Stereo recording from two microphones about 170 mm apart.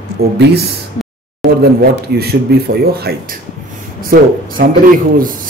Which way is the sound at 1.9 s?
70° right (ahead or behind).